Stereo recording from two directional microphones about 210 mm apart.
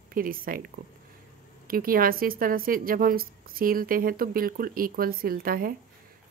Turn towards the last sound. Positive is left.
turn(degrees=-45)  # may be behind; listen again after turning